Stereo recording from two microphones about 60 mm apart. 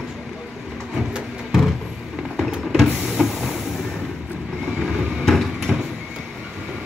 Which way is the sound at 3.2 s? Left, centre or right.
Centre.